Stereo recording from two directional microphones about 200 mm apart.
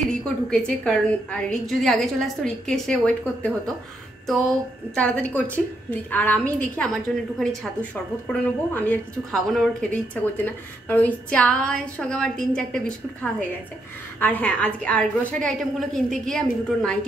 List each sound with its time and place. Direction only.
0.1 s a woman's voice: 5° left (ahead or behind)
4.9 s a woman's voice: 5° left (ahead or behind)
14.2 s a woman's voice: 10° left (ahead or behind)